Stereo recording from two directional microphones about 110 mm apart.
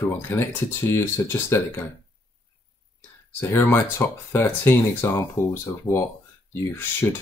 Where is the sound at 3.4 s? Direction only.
20° left (ahead or behind).